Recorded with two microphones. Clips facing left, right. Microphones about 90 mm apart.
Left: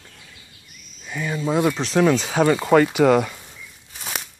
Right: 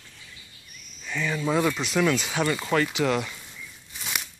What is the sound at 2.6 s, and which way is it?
Speech, 55° left (ahead or behind).